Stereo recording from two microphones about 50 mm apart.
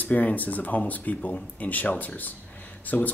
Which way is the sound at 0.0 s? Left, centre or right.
Left.